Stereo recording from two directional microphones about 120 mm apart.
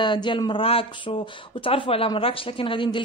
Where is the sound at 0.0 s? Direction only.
40° left (ahead or behind).